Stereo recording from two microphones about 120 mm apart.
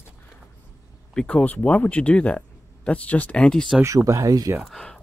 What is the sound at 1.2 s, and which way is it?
Speech, 10° left (ahead or behind).